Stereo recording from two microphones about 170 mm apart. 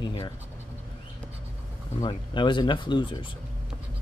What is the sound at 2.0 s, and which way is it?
Speech, 25° left (ahead or behind).